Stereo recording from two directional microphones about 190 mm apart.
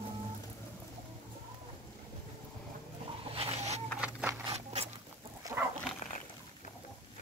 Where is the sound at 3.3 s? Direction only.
30° right (ahead or behind).